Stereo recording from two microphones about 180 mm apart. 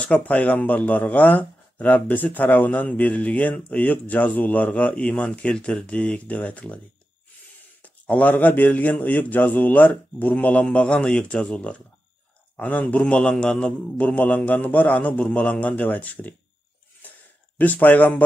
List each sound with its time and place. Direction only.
0.0 s a man's voice: 5° left (ahead or behind)
7.8 s a man's voice: 10° left (ahead or behind)
17.6 s a man's voice: 10° left (ahead or behind)